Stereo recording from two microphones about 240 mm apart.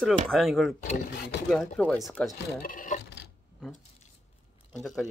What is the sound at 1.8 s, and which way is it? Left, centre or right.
Speech, centre.